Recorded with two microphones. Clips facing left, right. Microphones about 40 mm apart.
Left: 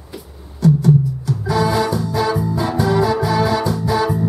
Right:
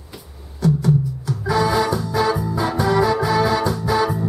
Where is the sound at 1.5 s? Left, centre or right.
Centre.